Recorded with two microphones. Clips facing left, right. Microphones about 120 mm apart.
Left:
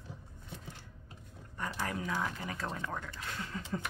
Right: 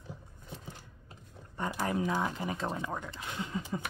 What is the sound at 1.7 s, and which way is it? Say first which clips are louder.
Speech: right 5 dB; 20° right (ahead or behind).